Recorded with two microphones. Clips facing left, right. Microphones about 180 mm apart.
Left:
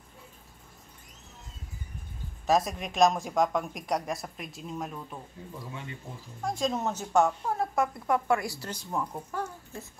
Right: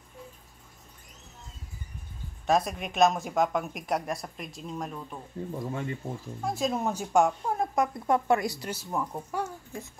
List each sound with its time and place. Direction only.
2.4 s speech: centre (ahead or behind)
5.6 s speech: 50° right (ahead or behind)
6.4 s speech: 5° right (ahead or behind)
8.6 s speech: 10° right (ahead or behind)